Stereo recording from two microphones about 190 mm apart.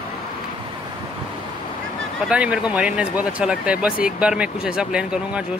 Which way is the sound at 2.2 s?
5° right (ahead or behind).